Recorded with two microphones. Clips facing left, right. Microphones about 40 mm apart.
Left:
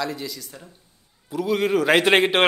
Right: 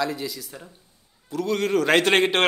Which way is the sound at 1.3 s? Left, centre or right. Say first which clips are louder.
Left 2 dB; centre.